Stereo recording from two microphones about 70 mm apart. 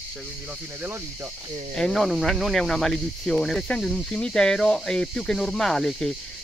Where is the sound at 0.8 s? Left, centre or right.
Right.